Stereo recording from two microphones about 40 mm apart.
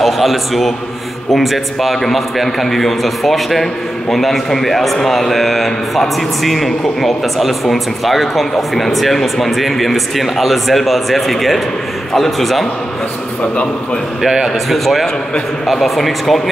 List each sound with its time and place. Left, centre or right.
0.0 s a man's voice: centre
14.7 s a man's voice: centre